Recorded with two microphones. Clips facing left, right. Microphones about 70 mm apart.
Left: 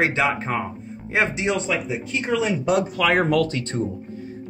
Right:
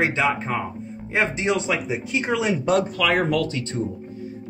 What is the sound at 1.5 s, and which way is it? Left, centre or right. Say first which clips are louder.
Speech: right 1 dB; centre.